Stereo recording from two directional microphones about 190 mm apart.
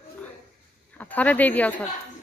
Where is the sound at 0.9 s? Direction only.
10° left (ahead or behind).